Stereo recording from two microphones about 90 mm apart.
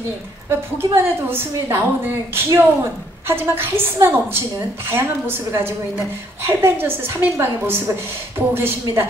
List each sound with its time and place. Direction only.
0.9 s a woman's voice: 25° right (ahead or behind)